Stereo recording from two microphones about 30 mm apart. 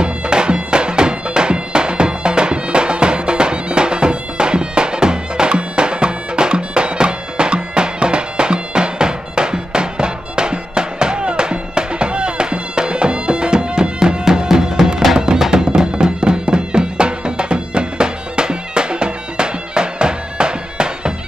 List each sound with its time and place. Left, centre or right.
0.0 s bagpipes: right
15.3 s music: centre
15.6 s music: right